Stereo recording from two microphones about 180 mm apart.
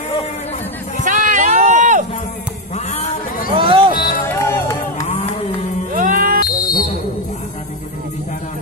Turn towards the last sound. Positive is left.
turn(degrees=-50)  # may be behind; listen again after turning